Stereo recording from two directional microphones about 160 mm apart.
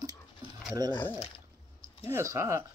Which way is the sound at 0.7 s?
25° right (ahead or behind).